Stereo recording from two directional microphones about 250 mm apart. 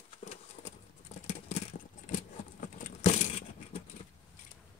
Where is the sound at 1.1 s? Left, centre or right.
Left.